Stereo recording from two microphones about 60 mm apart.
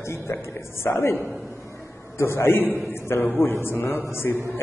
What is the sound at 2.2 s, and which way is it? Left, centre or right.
A man's voice, left.